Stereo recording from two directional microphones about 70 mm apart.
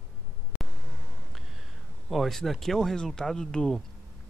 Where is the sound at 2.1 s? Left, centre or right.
Centre.